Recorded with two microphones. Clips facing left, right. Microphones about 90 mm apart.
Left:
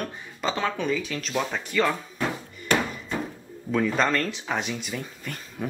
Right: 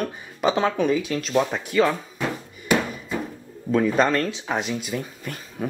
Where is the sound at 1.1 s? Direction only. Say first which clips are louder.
Right 6 dB; 5° right (ahead or behind).